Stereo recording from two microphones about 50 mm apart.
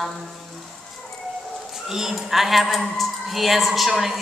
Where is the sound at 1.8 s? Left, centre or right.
Centre.